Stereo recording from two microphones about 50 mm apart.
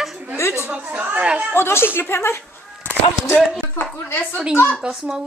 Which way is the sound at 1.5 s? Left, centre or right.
Left.